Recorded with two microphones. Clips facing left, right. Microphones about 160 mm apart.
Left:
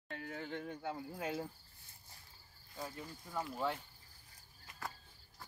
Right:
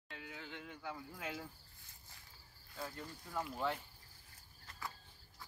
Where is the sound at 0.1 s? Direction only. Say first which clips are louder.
Left 7 dB; 45° left (ahead or behind); by 1.5 s 30° left (ahead or behind).